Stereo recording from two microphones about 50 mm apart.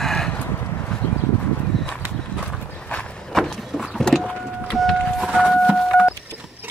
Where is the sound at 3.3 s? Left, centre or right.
Centre.